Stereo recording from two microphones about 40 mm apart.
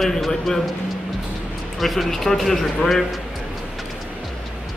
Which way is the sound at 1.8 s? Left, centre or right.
Centre.